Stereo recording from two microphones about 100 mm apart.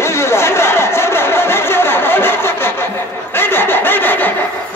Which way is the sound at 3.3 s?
20° left (ahead or behind).